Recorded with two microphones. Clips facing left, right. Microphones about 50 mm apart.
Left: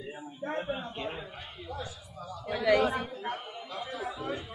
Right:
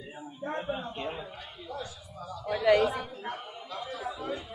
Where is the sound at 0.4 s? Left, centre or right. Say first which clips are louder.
Even; centre.